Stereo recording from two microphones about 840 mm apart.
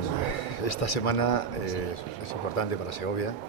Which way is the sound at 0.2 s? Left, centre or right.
Left.